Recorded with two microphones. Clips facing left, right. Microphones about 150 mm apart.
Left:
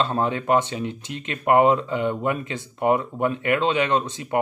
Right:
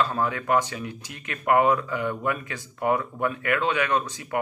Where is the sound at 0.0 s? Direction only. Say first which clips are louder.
Left 2 dB; 25° left (ahead or behind).